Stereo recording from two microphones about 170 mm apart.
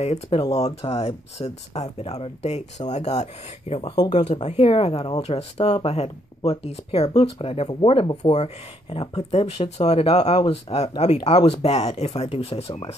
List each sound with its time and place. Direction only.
0.0 s speech: 40° left (ahead or behind)
0.4 s speech: 20° left (ahead or behind)
0.8 s speech: 35° left (ahead or behind)
3.9 s speech: 20° left (ahead or behind)
4.3 s speech: 40° left (ahead or behind)